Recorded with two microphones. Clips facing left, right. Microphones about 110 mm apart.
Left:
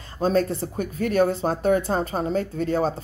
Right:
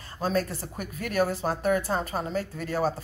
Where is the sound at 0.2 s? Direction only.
30° left (ahead or behind).